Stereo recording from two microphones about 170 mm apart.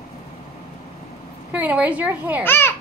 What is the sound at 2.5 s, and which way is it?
Speech, 15° left (ahead or behind).